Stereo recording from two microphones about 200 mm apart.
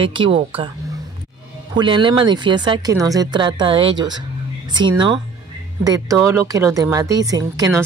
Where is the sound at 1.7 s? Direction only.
25° right (ahead or behind).